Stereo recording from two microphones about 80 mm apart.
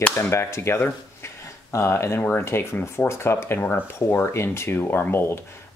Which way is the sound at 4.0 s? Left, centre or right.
Left.